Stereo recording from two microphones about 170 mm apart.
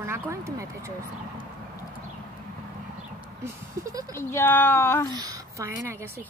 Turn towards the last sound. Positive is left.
turn(degrees=-15)  # may be behind; listen again after turning